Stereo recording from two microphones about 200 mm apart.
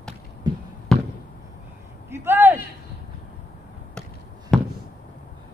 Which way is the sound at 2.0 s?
10° right (ahead or behind).